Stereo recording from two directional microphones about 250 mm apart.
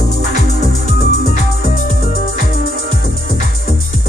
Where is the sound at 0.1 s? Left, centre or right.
Left.